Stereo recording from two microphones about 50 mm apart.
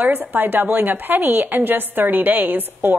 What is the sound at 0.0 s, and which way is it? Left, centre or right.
A woman's voice, right.